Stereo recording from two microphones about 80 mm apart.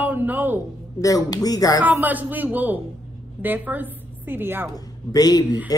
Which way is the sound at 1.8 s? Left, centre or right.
Right.